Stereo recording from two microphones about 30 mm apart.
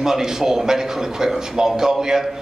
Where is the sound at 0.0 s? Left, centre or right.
Centre.